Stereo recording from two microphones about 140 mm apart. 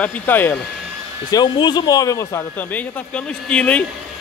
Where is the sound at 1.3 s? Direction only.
30° left (ahead or behind); by 3.8 s 10° left (ahead or behind).